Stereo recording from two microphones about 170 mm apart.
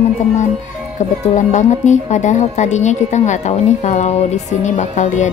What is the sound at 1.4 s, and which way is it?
A woman's voice, 45° left (ahead or behind).